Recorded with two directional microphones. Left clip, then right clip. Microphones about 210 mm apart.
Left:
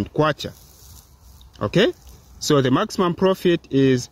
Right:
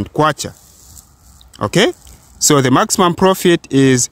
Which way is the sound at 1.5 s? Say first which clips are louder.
Right 5 dB; 35° right (ahead or behind).